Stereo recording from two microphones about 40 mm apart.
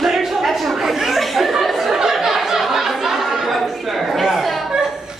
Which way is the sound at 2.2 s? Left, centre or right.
Centre.